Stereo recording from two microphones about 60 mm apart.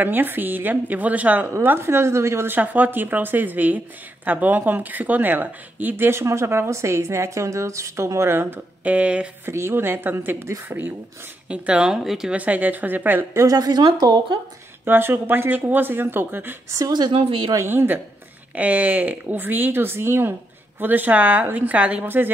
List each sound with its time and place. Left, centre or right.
0.0 s speech: right
1.6 s a woman's voice: right
2.5 s speech: right
6.0 s a woman's voice: right
8.8 s a woman's voice: right
9.5 s speech: right
11.4 s speech: centre
12.3 s a woman's voice: right
13.5 s speech: right
14.9 s speech: right
17.6 s a woman's voice: right
22.0 s speech: right